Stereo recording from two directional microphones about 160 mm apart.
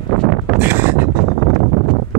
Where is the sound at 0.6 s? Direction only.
10° right (ahead or behind).